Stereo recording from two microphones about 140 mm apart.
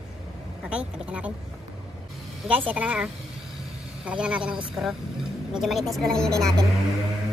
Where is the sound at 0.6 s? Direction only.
10° right (ahead or behind).